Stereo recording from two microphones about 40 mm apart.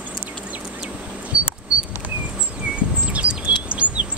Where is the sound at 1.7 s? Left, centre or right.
Right.